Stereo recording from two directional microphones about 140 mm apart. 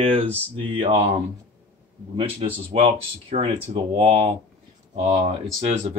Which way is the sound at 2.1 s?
40° right (ahead or behind).